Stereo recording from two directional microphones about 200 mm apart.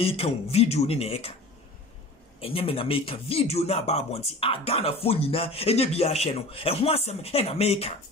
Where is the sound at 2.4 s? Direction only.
30° left (ahead or behind).